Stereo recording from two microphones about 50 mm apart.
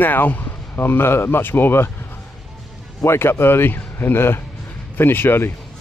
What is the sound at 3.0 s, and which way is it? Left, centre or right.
Speech, left.